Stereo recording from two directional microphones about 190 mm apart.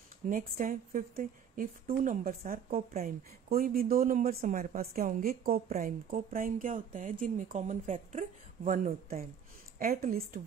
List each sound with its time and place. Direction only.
0.3 s a woman's voice: 45° right (ahead or behind)